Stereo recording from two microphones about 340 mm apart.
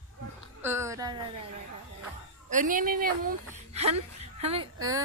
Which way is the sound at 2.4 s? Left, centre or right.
Right.